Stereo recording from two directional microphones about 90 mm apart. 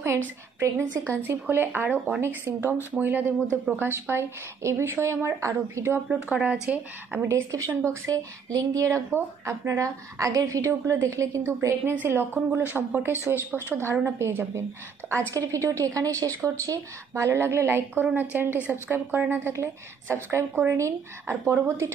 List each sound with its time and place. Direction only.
0.6 s a woman's voice: 30° right (ahead or behind)
6.0 s speech: 15° right (ahead or behind)
7.2 s a woman's voice: 35° right (ahead or behind)
11.9 s a woman's voice: 20° right (ahead or behind)